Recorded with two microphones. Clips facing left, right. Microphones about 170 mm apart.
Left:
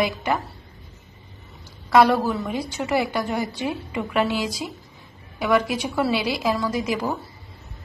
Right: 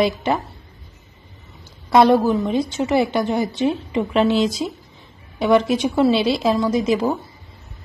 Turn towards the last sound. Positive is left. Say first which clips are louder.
# right 6 dB
turn(degrees=-25)  # may be behind; listen again after turning